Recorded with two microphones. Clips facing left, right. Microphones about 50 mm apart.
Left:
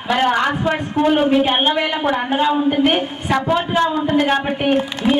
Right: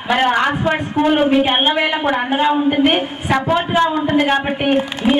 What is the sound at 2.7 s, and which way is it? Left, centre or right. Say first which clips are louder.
Speech: right 1 dB; right.